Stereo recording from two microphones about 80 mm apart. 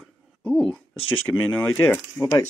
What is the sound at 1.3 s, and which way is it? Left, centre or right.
Speech, centre.